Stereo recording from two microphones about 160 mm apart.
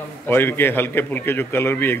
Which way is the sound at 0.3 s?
15° left (ahead or behind).